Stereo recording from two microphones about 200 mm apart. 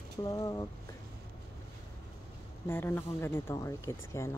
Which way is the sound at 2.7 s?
10° left (ahead or behind).